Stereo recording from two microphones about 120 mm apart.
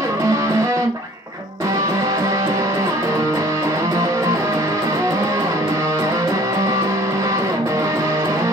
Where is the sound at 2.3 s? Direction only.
25° right (ahead or behind).